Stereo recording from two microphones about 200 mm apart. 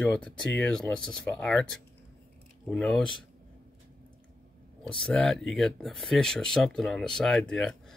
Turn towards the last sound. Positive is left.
turn(degrees=5)  # may be behind; listen again after turning